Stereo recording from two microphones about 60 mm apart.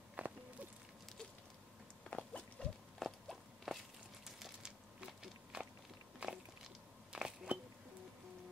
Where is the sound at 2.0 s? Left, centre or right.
Centre.